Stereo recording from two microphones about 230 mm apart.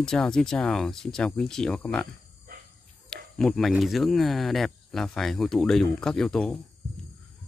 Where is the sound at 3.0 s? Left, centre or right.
Centre.